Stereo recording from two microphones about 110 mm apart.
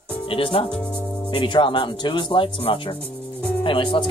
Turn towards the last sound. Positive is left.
turn(degrees=50)  # may be behind; listen again after turning